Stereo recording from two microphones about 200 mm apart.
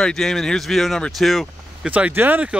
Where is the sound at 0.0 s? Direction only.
Centre (ahead or behind).